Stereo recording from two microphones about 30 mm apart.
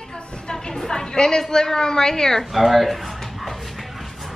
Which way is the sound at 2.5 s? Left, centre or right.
Centre.